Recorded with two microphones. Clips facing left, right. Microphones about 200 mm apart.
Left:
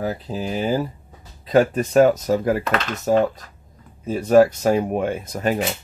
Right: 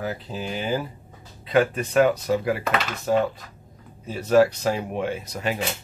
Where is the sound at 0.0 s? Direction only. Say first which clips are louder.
Left 4 dB; 35° left (ahead or behind).